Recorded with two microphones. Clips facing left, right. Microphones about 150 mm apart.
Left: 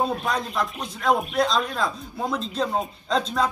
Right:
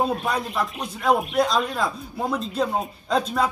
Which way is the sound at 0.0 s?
5° right (ahead or behind).